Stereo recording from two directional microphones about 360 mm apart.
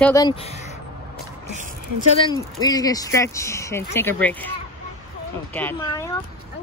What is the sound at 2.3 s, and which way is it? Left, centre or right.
Speech, centre.